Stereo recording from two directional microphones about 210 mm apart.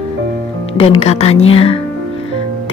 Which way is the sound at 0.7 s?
25° left (ahead or behind).